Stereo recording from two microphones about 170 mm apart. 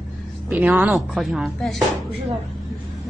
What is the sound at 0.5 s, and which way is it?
A woman's voice, 10° right (ahead or behind).